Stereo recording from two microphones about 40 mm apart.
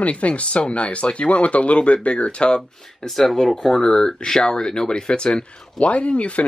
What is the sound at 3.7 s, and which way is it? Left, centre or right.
Speech, centre.